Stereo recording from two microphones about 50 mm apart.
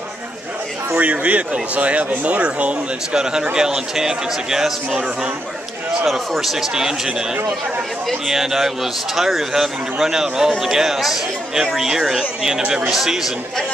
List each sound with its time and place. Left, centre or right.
0.9 s a man's voice: right; by 4.7 s centre
4.9 s speech: right
6.0 s a man's voice: centre
8.3 s a man's voice: centre